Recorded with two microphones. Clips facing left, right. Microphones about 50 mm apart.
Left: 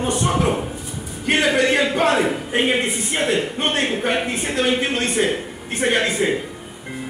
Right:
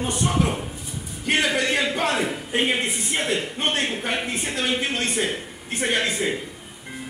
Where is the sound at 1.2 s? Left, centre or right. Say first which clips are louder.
Left 4 dB; left.